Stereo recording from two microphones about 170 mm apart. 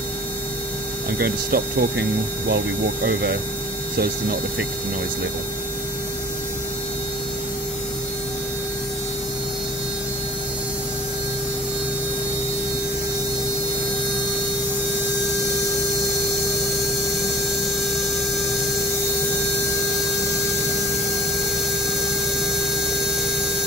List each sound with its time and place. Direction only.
1.2 s speech: 65° right (ahead or behind)